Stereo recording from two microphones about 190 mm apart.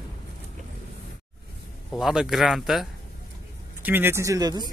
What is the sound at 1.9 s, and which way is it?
Speech, centre (ahead or behind).